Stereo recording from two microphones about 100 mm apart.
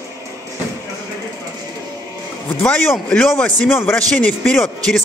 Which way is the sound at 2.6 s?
20° left (ahead or behind).